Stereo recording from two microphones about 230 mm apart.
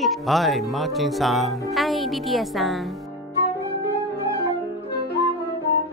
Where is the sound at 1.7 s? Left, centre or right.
Centre.